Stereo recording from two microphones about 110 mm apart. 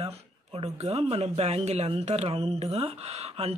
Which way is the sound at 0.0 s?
70° right (ahead or behind).